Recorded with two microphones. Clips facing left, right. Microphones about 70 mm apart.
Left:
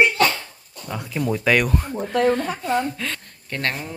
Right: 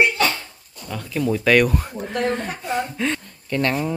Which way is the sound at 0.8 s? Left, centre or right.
Centre.